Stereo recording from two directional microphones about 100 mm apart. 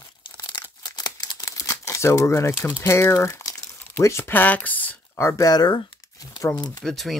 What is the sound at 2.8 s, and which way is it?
Speech, 30° left (ahead or behind).